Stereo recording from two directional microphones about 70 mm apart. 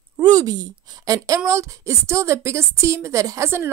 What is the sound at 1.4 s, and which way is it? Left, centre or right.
A woman's voice, right.